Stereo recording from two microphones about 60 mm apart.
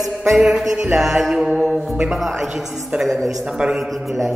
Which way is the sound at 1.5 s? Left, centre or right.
Centre.